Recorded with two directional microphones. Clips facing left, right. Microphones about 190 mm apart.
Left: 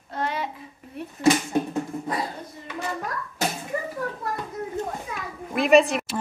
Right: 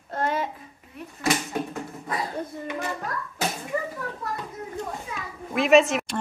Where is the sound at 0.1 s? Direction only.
50° right (ahead or behind).